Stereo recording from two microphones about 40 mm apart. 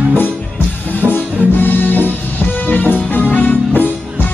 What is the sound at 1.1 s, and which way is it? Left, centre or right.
Music, left.